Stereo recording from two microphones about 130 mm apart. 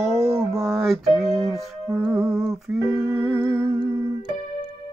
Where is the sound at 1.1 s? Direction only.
Centre (ahead or behind).